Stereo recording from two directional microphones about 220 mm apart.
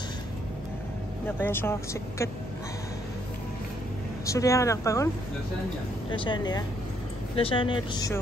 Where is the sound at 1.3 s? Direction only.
10° left (ahead or behind).